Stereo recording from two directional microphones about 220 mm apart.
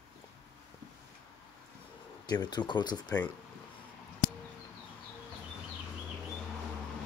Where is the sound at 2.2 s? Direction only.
20° left (ahead or behind).